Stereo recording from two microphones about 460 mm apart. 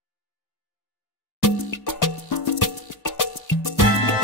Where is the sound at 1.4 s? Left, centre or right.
Left.